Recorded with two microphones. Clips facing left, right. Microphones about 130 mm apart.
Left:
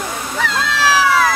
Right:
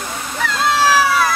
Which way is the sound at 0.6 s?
90° left.